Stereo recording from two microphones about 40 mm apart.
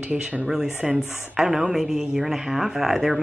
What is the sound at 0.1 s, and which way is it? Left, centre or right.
Speech, centre.